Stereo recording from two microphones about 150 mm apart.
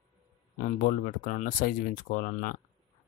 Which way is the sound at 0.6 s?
60° left (ahead or behind).